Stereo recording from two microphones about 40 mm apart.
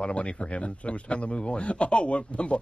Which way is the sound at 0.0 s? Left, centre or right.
Left.